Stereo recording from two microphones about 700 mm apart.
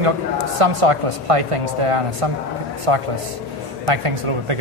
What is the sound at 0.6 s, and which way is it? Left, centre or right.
A man's voice, right.